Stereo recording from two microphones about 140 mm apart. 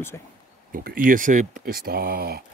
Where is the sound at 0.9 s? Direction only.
70° right (ahead or behind); by 2.3 s 90° right.